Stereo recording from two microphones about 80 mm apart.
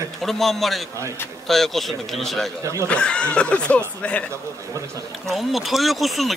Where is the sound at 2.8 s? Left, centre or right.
Centre.